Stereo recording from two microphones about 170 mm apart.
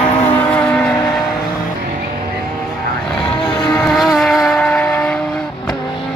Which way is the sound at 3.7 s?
Centre (ahead or behind).